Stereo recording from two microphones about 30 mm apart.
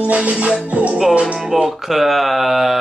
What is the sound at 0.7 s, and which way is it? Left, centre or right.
Speech, right.